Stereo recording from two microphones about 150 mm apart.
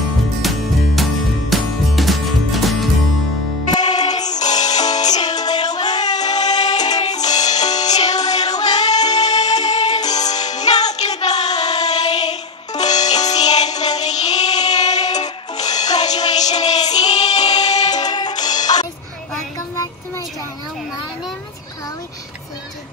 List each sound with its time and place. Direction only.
0.4 s music: centre (ahead or behind)
3.6 s music: 25° left (ahead or behind)
14.2 s child singing: 25° left (ahead or behind)
14.8 s music: 25° left (ahead or behind)